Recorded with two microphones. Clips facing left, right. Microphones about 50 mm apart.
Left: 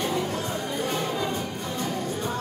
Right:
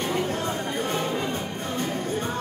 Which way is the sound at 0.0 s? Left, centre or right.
Right.